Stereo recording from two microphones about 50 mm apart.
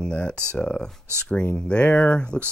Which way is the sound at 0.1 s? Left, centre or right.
Left.